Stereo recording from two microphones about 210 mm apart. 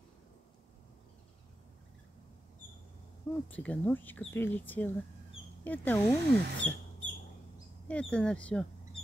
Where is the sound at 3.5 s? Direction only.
5° left (ahead or behind).